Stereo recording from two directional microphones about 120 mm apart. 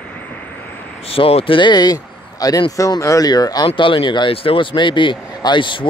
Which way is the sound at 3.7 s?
45° left (ahead or behind).